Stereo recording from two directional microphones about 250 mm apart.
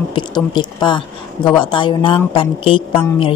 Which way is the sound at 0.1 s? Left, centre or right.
Centre.